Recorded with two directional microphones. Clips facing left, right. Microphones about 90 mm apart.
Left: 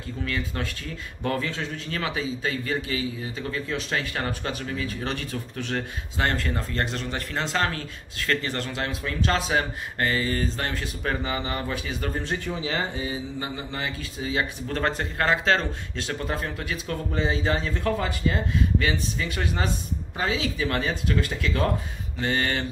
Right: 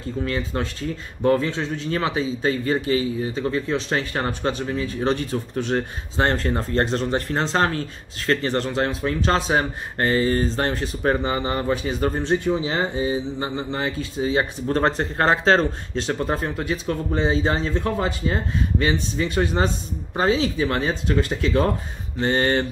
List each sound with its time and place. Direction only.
0.2 s a man's voice: 30° right (ahead or behind)